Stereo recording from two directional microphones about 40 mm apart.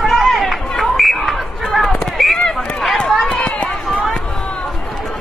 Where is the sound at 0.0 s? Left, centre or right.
Centre.